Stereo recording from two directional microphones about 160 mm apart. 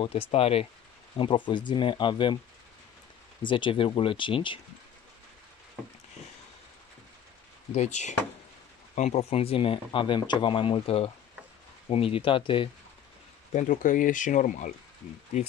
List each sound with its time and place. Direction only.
0.0 s speech: 35° left (ahead or behind)
3.4 s speech: 30° left (ahead or behind)
7.7 s speech: 45° left (ahead or behind)
13.5 s speech: 50° left (ahead or behind)